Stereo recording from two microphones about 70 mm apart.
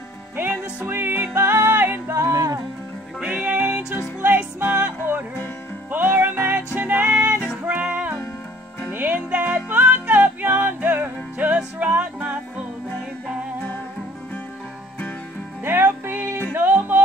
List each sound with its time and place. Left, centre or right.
0.8 s music: right
2.3 s music: right
3.2 s music: centre
8.9 s music: right
15.6 s music: right